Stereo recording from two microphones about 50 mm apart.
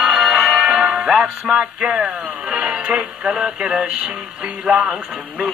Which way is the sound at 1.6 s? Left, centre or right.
Right.